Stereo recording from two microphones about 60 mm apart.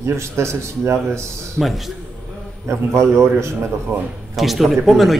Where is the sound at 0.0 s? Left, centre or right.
Right.